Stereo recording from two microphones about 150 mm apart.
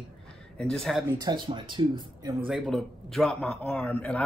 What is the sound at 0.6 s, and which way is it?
Speech, 5° left (ahead or behind).